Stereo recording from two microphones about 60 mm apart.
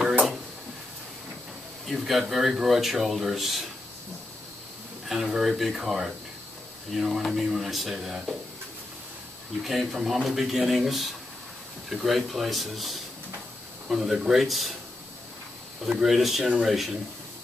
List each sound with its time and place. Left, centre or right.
1.9 s speech: centre
5.0 s speech: centre
9.6 s speech: centre
15.9 s speech: centre